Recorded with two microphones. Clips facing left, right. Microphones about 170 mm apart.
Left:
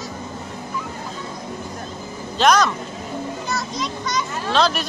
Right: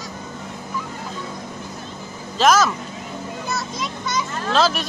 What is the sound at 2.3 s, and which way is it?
Speech, centre (ahead or behind).